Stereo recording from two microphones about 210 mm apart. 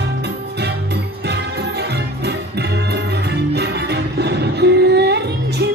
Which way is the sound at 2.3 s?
50° right (ahead or behind).